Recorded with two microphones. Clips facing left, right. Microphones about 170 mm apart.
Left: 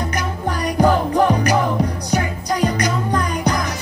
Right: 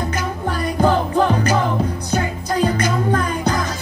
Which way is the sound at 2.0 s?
15° left (ahead or behind).